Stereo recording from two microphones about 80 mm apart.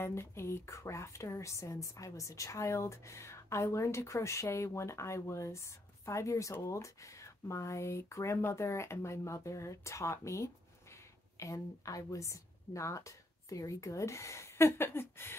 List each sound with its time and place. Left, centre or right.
0.0 s speech: left